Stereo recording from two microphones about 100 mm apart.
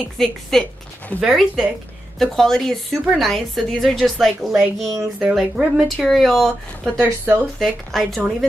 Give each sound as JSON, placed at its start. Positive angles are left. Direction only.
{"t": 0.2, "sound": "a woman's voice", "side_deg": 5}
{"t": 7.0, "sound": "speech", "side_deg": -20}
{"t": 7.5, "sound": "a woman's voice", "side_deg": 0}